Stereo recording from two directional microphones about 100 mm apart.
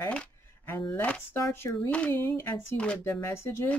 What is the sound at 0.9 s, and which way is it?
Speech, 15° left (ahead or behind).